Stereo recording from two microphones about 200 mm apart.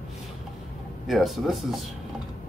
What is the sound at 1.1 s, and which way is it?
Speech, centre (ahead or behind).